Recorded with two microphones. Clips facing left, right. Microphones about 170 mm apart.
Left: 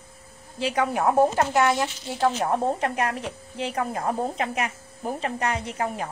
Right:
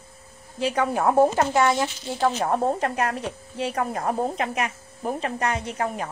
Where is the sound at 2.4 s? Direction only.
30° right (ahead or behind).